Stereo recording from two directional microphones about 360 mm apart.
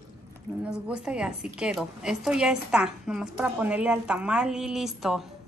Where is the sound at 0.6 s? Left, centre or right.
Centre.